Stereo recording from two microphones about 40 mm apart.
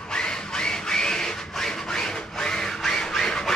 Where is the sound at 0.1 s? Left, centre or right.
Left.